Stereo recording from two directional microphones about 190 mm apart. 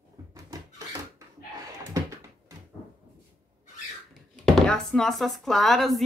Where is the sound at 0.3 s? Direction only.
20° right (ahead or behind).